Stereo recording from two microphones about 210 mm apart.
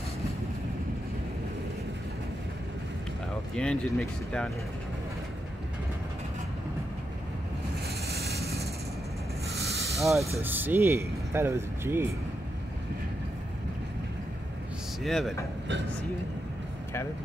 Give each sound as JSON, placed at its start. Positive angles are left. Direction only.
{"t": 3.5, "sound": "speech", "side_deg": 5}
{"t": 8.1, "sound": "vehicle", "side_deg": -50}
{"t": 9.7, "sound": "vehicle", "side_deg": 0}
{"t": 10.4, "sound": "speech", "side_deg": -10}
{"t": 15.0, "sound": "speech", "side_deg": 0}